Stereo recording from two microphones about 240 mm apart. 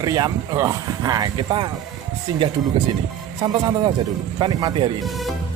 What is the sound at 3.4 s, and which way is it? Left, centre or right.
Speech, centre.